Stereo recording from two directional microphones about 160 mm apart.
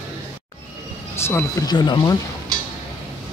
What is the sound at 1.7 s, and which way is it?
Speech, 25° left (ahead or behind).